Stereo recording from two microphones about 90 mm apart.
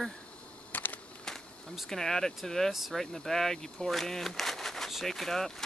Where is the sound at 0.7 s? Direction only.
20° left (ahead or behind).